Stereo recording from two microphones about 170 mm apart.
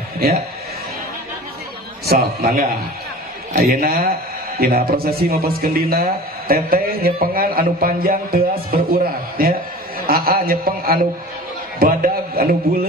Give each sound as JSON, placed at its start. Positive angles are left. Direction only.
{"t": 0.2, "sound": "speech", "side_deg": -65}
{"t": 2.0, "sound": "speech", "side_deg": -60}